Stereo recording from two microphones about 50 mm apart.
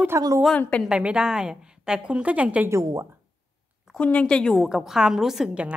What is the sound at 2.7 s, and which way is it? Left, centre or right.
Speech, right.